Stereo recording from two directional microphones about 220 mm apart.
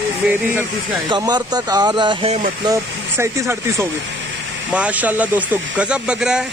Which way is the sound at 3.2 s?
10° right (ahead or behind).